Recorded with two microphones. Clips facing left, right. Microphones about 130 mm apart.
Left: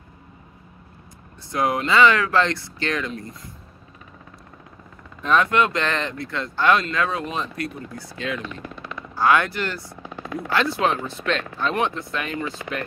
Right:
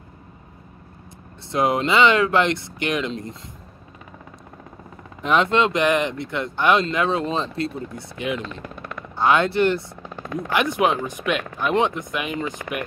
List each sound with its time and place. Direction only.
1.5 s speech: 25° right (ahead or behind)
5.2 s speech: 20° right (ahead or behind)
8.6 s machine gun: 50° right (ahead or behind)
9.1 s speech: 25° right (ahead or behind)